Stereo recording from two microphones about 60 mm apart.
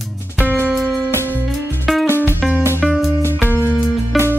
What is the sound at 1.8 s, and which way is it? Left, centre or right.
Music, centre.